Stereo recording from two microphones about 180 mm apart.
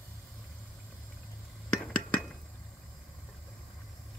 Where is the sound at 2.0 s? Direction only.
5° left (ahead or behind).